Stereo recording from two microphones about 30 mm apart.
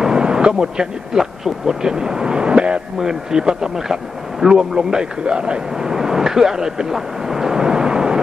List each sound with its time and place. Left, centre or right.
0.0 s a sound: right
1.7 s speech: right
3.0 s speech: right
5.2 s speech: right